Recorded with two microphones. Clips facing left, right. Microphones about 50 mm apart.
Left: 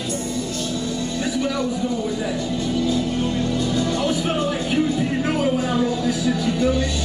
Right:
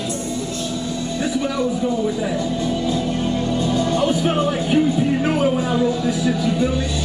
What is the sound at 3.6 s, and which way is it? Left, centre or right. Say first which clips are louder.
Speech: right 5 dB; right.